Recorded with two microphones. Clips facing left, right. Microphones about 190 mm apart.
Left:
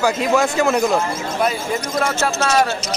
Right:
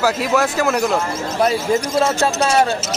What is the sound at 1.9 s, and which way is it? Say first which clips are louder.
Speech: right 1 dB; 30° right (ahead or behind).